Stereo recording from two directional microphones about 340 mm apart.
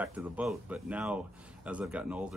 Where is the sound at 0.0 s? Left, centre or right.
Centre.